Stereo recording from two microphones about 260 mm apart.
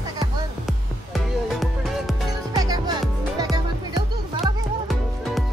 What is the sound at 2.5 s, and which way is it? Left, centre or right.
Music, centre.